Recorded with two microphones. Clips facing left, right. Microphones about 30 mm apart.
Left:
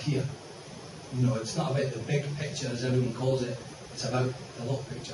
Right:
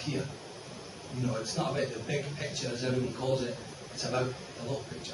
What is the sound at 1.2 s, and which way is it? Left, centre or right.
A man's voice, centre.